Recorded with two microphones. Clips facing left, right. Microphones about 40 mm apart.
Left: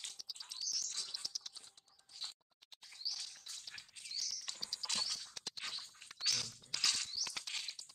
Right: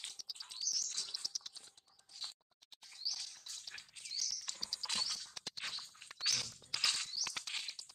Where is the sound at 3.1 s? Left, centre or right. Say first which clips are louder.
Right 1 dB; centre.